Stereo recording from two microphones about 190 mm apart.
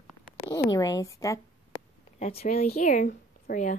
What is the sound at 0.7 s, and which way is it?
Speech, 20° left (ahead or behind).